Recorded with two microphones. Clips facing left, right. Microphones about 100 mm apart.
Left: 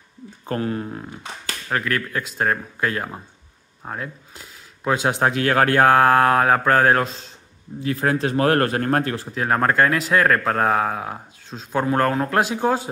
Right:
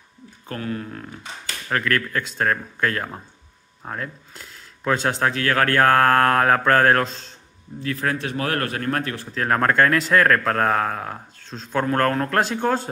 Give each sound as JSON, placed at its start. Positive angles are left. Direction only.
{"t": 0.5, "sound": "speech", "side_deg": 30}
{"t": 1.7, "sound": "speech", "side_deg": 5}
{"t": 7.8, "sound": "a man's voice", "side_deg": 25}
{"t": 9.3, "sound": "speech", "side_deg": 5}